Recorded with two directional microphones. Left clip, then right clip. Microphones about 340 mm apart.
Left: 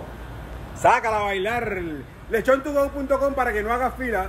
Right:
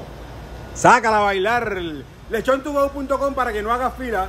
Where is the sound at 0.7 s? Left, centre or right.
Right; by 4.3 s centre.